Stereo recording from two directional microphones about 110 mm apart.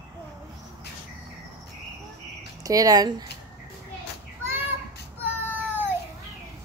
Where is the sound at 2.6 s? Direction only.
35° right (ahead or behind).